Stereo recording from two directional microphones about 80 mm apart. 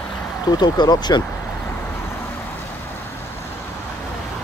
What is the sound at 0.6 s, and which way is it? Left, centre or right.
Speech, left.